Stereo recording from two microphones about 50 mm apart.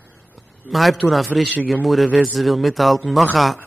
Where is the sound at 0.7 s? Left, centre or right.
Centre.